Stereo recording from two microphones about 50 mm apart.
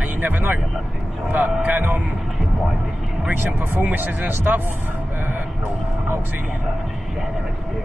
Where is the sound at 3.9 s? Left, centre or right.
Right.